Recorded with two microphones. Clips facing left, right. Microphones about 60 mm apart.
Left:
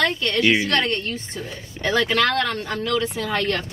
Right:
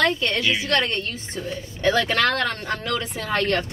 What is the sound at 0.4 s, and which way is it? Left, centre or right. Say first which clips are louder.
Speech: left 5 dB; left.